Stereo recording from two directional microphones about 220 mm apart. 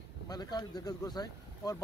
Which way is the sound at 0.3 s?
20° left (ahead or behind).